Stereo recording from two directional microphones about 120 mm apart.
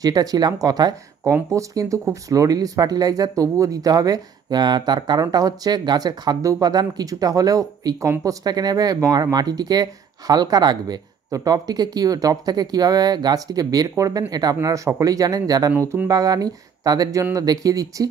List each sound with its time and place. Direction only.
0.0 s speech: 30° right (ahead or behind)